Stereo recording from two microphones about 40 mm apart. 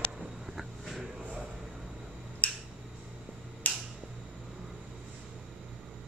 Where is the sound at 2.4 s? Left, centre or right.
Left.